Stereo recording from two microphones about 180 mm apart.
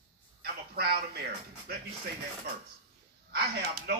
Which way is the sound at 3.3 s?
65° right (ahead or behind).